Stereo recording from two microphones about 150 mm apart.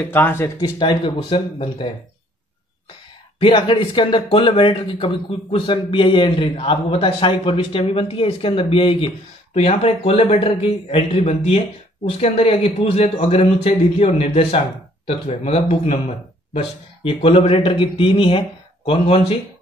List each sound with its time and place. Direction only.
0.1 s speech: 15° left (ahead or behind)
0.6 s speech: 30° left (ahead or behind)
3.3 s speech: 35° left (ahead or behind)